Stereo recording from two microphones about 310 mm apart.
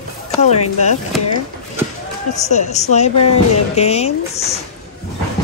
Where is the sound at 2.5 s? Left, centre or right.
Left.